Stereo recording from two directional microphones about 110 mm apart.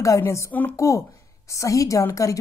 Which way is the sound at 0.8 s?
30° left (ahead or behind).